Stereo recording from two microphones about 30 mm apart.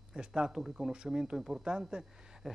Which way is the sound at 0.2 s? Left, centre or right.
Right.